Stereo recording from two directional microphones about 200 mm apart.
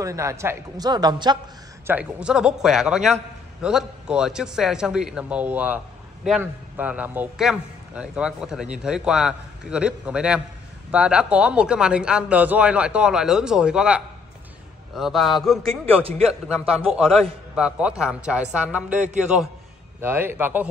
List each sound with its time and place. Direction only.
0.0 s a man's voice: 15° right (ahead or behind)
1.9 s a man's voice: 5° right (ahead or behind)
20.0 s a man's voice: 10° right (ahead or behind)